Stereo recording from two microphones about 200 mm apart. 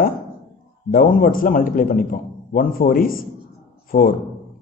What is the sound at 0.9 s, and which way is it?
A man's voice, 45° left (ahead or behind).